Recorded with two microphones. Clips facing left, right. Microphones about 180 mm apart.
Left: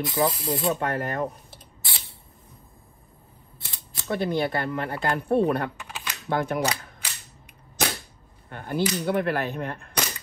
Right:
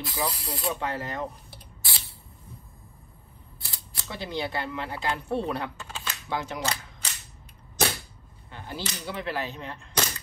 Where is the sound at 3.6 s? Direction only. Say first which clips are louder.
Left 1 dB; 25° left (ahead or behind).